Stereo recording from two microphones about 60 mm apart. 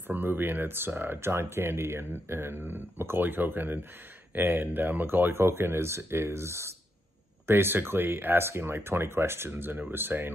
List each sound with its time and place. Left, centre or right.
0.1 s speech: right
7.4 s speech: right